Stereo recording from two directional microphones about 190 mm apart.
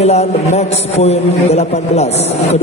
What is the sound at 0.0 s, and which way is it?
A man's voice, 35° left (ahead or behind).